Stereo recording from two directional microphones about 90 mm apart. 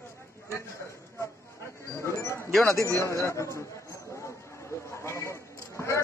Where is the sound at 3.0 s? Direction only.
35° left (ahead or behind).